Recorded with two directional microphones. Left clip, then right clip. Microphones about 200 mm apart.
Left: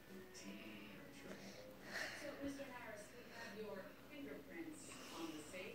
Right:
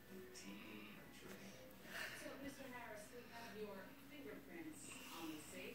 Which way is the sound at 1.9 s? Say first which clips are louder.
Left 3 dB; 25° right (ahead or behind).